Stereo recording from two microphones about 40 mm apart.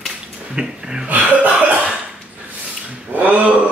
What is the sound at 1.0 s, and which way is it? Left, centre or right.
Cough, right.